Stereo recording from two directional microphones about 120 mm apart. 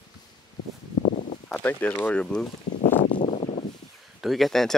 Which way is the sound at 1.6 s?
15° left (ahead or behind).